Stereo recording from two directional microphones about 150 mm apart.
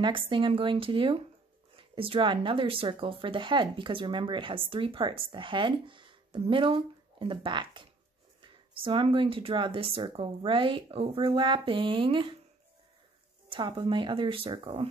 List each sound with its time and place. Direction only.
0.0 s speech: 35° right (ahead or behind)
13.5 s speech: 35° right (ahead or behind)